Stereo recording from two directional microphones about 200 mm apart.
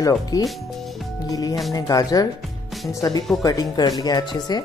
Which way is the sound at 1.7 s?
20° left (ahead or behind).